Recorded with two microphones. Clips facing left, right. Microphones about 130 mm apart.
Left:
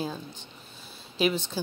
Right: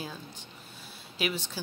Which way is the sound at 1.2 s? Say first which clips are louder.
Left 6 dB; 25° left (ahead or behind).